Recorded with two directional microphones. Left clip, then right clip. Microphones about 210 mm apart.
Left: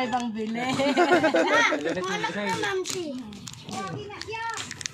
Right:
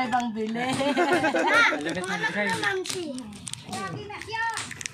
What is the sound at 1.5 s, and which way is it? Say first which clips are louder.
Speech: right 1 dB; centre (ahead or behind).